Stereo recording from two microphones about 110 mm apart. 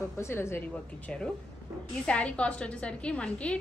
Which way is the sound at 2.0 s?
10° left (ahead or behind).